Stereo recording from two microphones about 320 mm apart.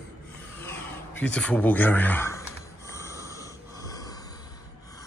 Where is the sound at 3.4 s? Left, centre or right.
Centre.